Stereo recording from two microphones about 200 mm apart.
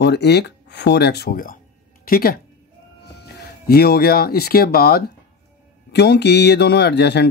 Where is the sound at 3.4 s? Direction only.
50° left (ahead or behind).